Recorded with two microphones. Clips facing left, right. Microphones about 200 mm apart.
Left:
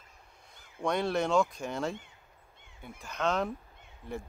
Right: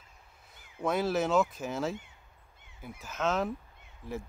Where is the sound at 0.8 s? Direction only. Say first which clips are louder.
Right 1 dB; 5° right (ahead or behind).